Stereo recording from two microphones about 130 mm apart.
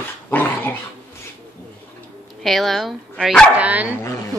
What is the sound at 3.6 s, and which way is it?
Dog, 10° right (ahead or behind).